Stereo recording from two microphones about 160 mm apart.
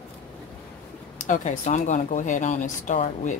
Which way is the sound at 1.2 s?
50° left (ahead or behind).